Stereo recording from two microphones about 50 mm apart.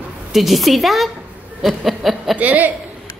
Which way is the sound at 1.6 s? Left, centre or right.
Centre.